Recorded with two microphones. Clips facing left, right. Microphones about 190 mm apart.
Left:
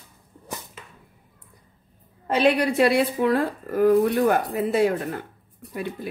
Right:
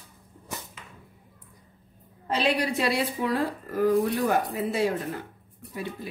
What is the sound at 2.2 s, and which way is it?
A woman's voice, 55° left (ahead or behind).